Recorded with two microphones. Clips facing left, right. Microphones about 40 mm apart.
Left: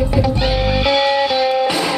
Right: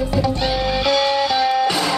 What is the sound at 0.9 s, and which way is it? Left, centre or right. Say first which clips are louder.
Music: left 2 dB; left.